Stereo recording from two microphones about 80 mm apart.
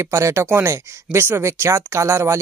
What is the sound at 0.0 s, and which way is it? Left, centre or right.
Speech, right.